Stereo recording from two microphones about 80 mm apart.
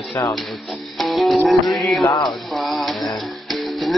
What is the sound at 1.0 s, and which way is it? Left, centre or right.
Music, centre.